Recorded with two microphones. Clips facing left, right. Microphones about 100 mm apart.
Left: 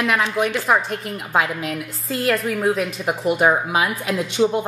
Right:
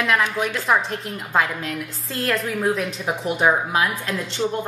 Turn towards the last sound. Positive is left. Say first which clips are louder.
# left 5 dB
turn(degrees=10)  # may be behind; listen again after turning